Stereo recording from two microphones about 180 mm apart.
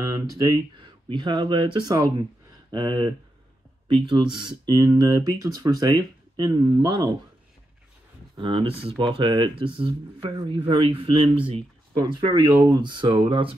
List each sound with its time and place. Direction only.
0.2 s speech: 20° right (ahead or behind)
8.4 s speech: 25° right (ahead or behind)